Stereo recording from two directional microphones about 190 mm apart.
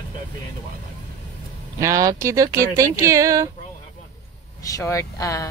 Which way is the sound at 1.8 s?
15° right (ahead or behind).